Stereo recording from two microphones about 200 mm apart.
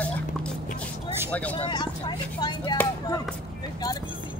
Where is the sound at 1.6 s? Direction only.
20° left (ahead or behind).